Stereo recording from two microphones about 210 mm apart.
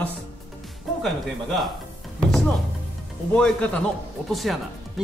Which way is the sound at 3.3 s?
5° left (ahead or behind).